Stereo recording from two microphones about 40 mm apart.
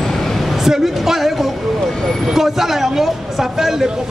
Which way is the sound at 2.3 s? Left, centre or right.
Centre.